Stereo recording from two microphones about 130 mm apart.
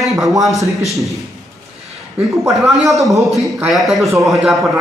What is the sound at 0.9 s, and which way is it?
Speech, centre (ahead or behind).